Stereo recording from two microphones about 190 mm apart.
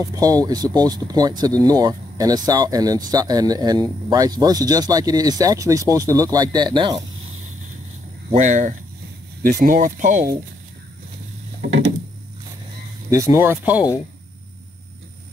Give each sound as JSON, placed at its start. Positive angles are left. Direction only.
{"t": 0.1, "sound": "speech", "side_deg": -20}
{"t": 8.3, "sound": "speech", "side_deg": -40}
{"t": 13.1, "sound": "speech", "side_deg": -15}